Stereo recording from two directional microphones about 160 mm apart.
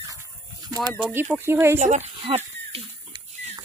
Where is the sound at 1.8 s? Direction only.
45° right (ahead or behind).